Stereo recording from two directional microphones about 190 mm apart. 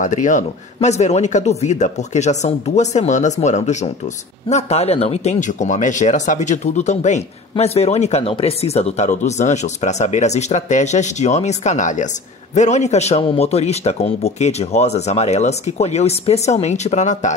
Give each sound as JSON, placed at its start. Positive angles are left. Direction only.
{"t": 0.0, "sound": "speech", "side_deg": 40}